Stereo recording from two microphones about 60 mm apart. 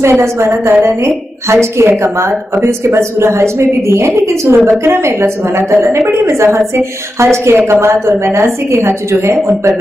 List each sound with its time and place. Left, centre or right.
0.0 s a woman's voice: right
1.5 s a woman's voice: right